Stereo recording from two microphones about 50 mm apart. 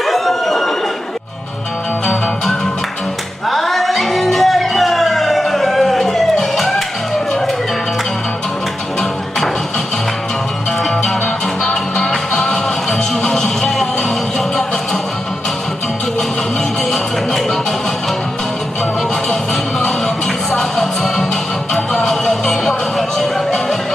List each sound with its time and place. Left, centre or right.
0.0 s a sound: centre
3.4 s music: centre
11.6 s music: centre
16.9 s music: centre
20.5 s music: centre